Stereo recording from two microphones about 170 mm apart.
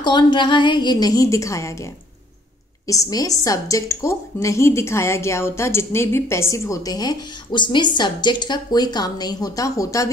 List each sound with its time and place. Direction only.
0.0 s a woman's voice: 25° left (ahead or behind)
2.9 s a woman's voice: 20° left (ahead or behind)